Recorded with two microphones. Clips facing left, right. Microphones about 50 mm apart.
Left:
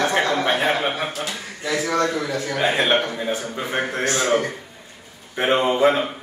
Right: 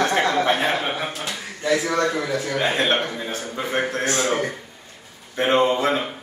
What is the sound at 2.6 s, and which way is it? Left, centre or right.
A man's voice, centre.